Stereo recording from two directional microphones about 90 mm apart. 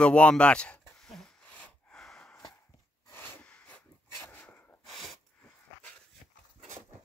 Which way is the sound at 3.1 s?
25° left (ahead or behind).